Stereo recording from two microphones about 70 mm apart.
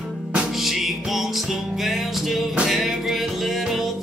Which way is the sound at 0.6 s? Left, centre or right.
Centre.